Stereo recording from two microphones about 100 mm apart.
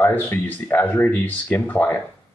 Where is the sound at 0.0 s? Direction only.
20° left (ahead or behind).